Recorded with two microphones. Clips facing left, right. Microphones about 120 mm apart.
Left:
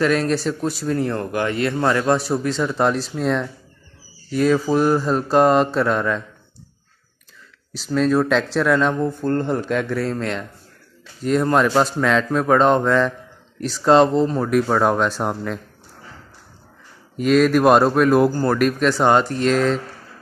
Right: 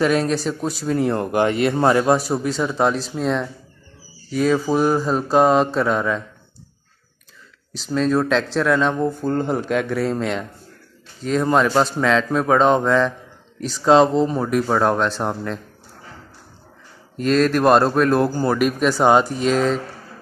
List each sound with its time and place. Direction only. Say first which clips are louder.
0.0 s speech: even; 5° right (ahead or behind)
1.1 s speech: right 3 dB; 20° right (ahead or behind)
2.1 s speech: even; 5° right (ahead or behind)
7.7 s speech: left 1 dB; 5° left (ahead or behind)
11.2 s speech: left 1 dB; 5° left (ahead or behind)
17.2 s speech: left 2 dB; 5° left (ahead or behind)
18.3 s speech: left 1 dB; 5° right (ahead or behind)